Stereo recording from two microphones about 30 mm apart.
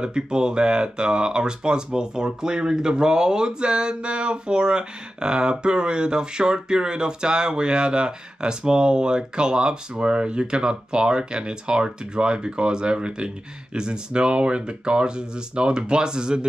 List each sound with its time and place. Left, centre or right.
0.0 s speech: right